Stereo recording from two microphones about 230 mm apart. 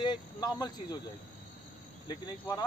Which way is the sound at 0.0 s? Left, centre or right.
Centre.